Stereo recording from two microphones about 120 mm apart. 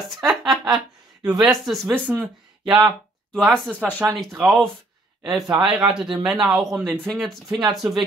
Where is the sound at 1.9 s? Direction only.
15° right (ahead or behind).